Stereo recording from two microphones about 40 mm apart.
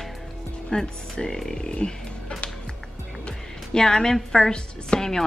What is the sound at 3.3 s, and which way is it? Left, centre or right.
A woman's voice, centre.